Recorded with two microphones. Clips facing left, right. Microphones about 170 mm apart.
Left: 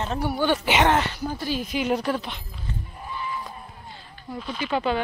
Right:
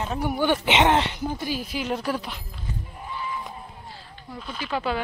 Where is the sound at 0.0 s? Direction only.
10° right (ahead or behind).